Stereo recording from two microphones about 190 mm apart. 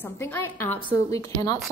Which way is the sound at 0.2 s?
10° left (ahead or behind).